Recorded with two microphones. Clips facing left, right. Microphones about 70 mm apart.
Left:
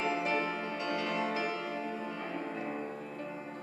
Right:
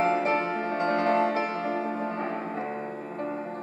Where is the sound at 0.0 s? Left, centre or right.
Right.